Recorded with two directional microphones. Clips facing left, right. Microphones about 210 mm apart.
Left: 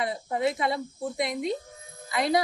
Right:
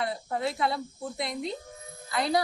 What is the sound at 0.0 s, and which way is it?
A man's voice, 15° left (ahead or behind).